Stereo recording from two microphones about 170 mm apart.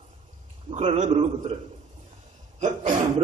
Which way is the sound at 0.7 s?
45° right (ahead or behind).